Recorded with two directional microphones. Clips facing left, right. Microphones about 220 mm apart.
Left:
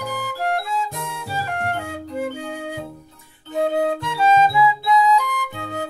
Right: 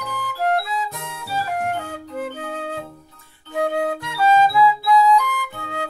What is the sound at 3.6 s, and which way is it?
Flute, 25° left (ahead or behind).